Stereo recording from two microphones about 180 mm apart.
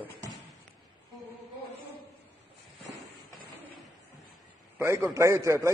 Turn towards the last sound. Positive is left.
turn(degrees=-15)  # may be behind; listen again after turning